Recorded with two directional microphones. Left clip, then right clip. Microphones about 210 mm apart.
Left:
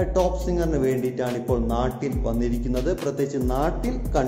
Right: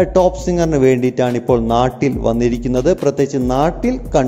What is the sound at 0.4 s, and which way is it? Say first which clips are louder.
A man's voice: right 9 dB; 35° right (ahead or behind).